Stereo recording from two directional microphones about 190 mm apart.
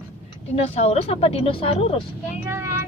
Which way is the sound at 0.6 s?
35° left (ahead or behind).